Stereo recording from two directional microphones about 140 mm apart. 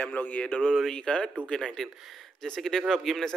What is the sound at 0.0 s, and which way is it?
A man's voice, 10° left (ahead or behind).